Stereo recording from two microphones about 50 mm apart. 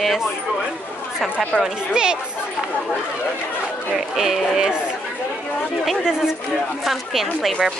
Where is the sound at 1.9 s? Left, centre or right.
Centre.